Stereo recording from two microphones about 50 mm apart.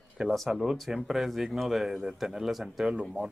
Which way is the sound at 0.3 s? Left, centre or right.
Centre.